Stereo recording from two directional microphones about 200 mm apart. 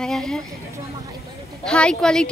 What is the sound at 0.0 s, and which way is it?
Speech, 5° left (ahead or behind).